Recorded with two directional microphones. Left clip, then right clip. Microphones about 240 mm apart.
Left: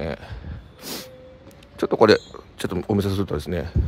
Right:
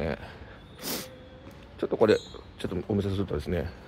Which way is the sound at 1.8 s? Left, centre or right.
Left.